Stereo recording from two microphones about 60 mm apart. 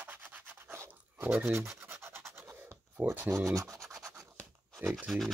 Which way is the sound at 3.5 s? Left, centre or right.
Right.